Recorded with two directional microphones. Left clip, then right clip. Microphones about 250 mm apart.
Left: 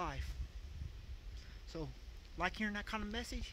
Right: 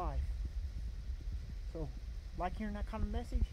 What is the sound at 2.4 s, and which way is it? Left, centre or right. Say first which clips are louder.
Speech: left 2 dB; left.